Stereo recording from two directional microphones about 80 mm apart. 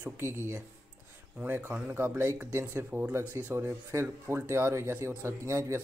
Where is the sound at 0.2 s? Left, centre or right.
Right.